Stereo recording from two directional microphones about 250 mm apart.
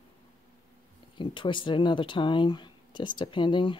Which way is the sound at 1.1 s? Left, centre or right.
Centre.